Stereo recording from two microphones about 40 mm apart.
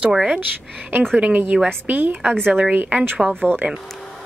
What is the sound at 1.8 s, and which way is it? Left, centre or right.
Speech, right.